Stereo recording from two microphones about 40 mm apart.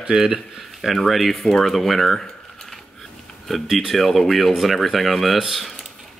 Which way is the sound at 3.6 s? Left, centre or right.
Centre.